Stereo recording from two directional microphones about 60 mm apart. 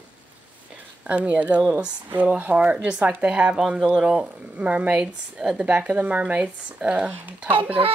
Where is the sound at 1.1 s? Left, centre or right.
Right.